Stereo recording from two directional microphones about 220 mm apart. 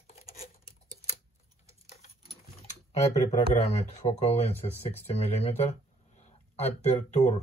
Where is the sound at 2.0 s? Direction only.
30° left (ahead or behind).